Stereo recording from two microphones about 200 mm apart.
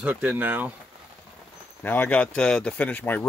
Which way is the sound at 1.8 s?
10° left (ahead or behind).